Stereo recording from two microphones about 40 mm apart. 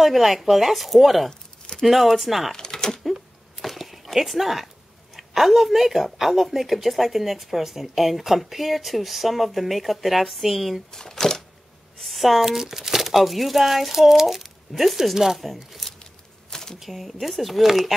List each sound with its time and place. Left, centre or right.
0.0 s a woman's voice: centre
2.5 s a sound: centre
3.1 s a sound: centre
5.1 s a woman's voice: centre
10.9 s speech: centre
12.0 s a woman's voice: centre
16.4 s typewriter: centre
16.8 s a woman's voice: centre